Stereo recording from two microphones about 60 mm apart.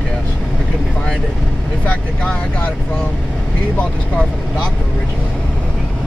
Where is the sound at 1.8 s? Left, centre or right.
Left.